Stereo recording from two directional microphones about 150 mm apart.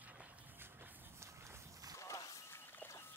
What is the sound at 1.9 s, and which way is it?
Walk, 20° left (ahead or behind).